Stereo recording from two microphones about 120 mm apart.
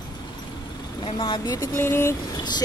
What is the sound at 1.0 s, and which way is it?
Speech, 40° left (ahead or behind).